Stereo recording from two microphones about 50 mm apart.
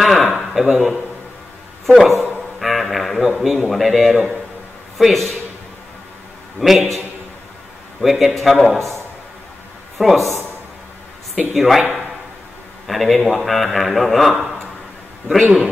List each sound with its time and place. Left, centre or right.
0.0 s a sound: centre
0.4 s a man's voice: centre
6.6 s a man's voice: centre
8.0 s a man's voice: centre
8.7 s a man's voice: right
9.9 s a man's voice: centre
11.5 s a man's voice: centre
12.8 s a man's voice: centre
14.3 s a man's voice: centre